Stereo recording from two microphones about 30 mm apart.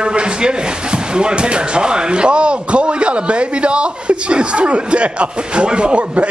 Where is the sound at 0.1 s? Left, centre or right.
Right.